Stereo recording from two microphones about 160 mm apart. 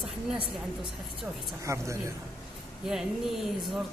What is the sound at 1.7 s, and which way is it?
Speech, 20° right (ahead or behind).